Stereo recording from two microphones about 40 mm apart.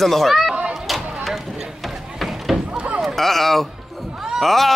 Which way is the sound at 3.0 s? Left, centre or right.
Centre.